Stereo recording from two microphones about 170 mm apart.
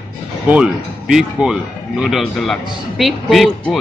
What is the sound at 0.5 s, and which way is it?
Speech, 5° right (ahead or behind).